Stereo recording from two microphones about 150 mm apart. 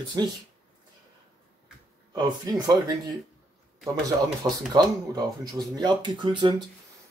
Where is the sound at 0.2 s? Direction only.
25° right (ahead or behind).